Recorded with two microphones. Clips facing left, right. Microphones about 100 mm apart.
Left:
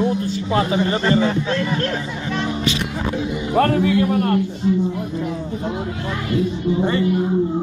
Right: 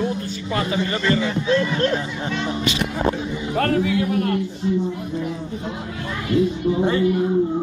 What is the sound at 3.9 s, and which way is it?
Speech, 45° left (ahead or behind).